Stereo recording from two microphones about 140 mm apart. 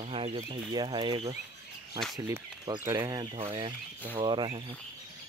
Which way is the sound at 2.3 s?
25° right (ahead or behind).